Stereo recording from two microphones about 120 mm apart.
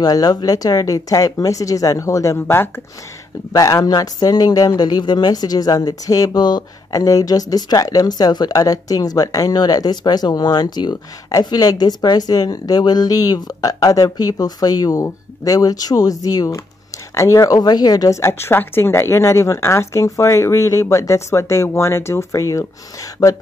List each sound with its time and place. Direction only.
0.0 s a woman's voice: 35° left (ahead or behind)
3.5 s a woman's voice: 30° left (ahead or behind)